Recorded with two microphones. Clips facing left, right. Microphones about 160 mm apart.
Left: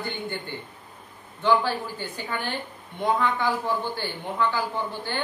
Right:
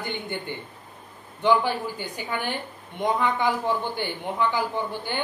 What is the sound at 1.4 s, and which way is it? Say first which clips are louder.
Speech: right 1 dB; 15° right (ahead or behind).